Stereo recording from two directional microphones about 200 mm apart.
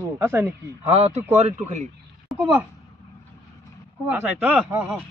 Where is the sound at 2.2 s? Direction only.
5° right (ahead or behind).